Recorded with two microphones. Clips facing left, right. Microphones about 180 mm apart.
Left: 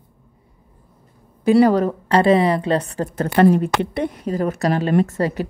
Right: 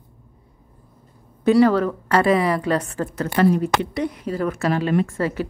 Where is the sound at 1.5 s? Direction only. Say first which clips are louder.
Left 1 dB; 15° left (ahead or behind).